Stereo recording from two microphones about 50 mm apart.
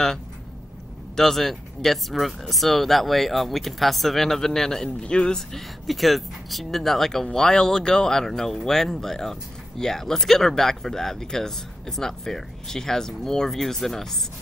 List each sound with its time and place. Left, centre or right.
1.1 s speech: centre
4.8 s speech: centre
5.5 s speech: centre